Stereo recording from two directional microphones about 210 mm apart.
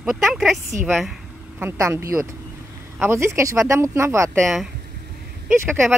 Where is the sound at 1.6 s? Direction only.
15° right (ahead or behind).